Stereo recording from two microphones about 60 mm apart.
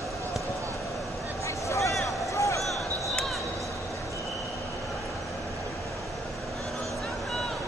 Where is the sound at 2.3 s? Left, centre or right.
Left.